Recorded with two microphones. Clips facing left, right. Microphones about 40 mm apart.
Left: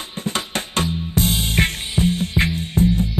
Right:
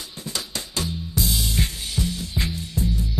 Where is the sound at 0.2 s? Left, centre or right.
Left.